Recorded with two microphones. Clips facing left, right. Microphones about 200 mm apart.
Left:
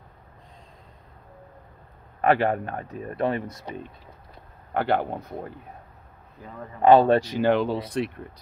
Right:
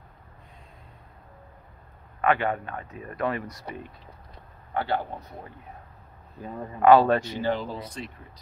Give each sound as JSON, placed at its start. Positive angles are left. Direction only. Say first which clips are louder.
{"t": 2.2, "sound": "speech", "louder": "left 3 dB", "side_deg": 35}
{"t": 4.7, "sound": "speech", "louder": "left 4 dB", "side_deg": 55}
{"t": 6.8, "sound": "speech", "louder": "left 1 dB", "side_deg": 30}
{"t": 7.4, "sound": "speech", "louder": "left 6 dB", "side_deg": 70}